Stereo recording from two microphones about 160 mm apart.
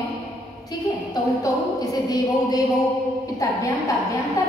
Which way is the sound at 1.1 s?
25° left (ahead or behind).